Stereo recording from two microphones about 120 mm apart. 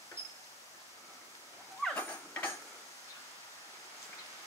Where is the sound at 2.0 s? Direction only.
15° left (ahead or behind).